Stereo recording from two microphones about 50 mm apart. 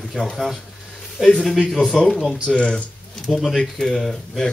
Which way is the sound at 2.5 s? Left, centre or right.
Left.